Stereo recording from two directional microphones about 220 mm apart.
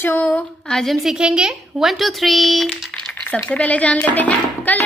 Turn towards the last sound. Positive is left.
turn(degrees=5)  # may be behind; listen again after turning